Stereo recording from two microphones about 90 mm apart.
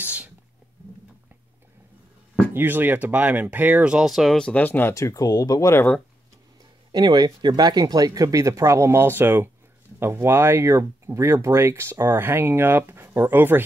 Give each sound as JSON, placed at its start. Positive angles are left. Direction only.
{"t": 0.0, "sound": "sneeze", "side_deg": -15}
{"t": 2.5, "sound": "speech", "side_deg": -20}
{"t": 4.4, "sound": "speech", "side_deg": 15}
{"t": 4.9, "sound": "speech", "side_deg": 40}
{"t": 6.9, "sound": "speech", "side_deg": -55}